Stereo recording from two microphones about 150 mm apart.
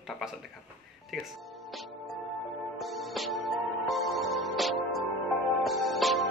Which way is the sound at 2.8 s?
Centre (ahead or behind).